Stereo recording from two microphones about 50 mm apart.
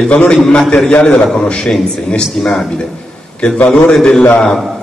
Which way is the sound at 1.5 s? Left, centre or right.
Centre.